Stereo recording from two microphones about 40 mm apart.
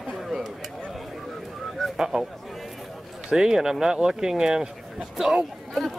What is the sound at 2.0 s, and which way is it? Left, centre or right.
Speech, centre.